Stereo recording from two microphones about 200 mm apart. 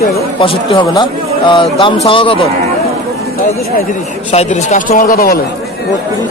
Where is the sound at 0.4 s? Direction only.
25° left (ahead or behind).